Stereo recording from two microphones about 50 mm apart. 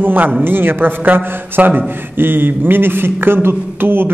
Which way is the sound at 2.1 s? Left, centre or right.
Right.